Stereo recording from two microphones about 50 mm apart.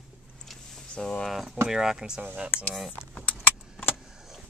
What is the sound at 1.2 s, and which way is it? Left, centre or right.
Speech, centre.